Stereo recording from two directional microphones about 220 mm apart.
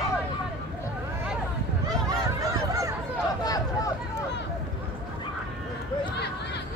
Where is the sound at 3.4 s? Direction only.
15° left (ahead or behind).